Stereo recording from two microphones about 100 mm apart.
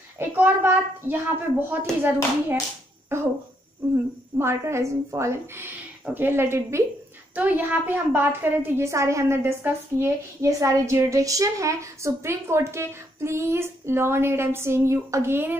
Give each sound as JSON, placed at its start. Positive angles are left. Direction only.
{"t": 0.2, "sound": "a woman's voice", "side_deg": -20}
{"t": 3.1, "sound": "a woman's voice", "side_deg": -25}